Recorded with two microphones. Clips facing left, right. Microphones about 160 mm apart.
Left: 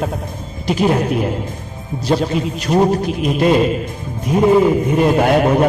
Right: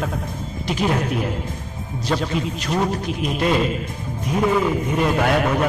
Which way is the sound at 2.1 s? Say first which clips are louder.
Left 6 dB; 35° left (ahead or behind).